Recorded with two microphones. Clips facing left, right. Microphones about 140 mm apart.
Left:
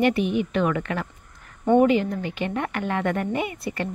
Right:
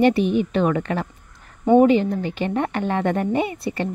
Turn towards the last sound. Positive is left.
turn(degrees=-30)  # may be behind; listen again after turning